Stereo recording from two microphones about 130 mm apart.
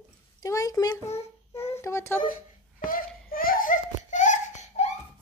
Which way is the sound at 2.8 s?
90° left.